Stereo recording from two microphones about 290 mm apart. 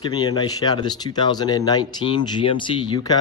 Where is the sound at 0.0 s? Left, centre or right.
Centre.